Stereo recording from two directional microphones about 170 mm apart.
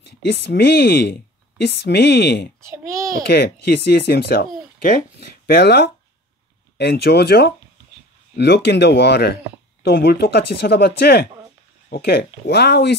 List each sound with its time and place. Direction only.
0.0 s speech: 75° left (ahead or behind)